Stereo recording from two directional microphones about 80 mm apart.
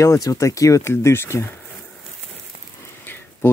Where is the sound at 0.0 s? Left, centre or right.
Left.